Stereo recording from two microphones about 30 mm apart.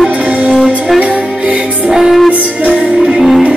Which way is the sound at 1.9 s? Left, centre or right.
Centre.